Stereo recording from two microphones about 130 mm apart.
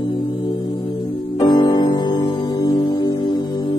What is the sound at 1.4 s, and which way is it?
Music, 30° left (ahead or behind).